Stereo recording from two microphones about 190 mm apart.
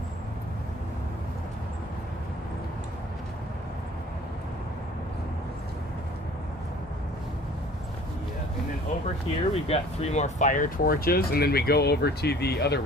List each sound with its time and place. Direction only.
9.5 s speech: 35° left (ahead or behind); by 12.8 s 60° left (ahead or behind)